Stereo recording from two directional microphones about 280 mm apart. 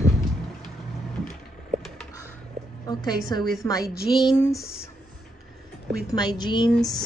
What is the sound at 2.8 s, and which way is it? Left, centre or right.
Speech, centre.